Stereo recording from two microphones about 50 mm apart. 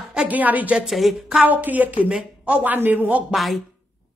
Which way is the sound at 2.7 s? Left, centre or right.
Right.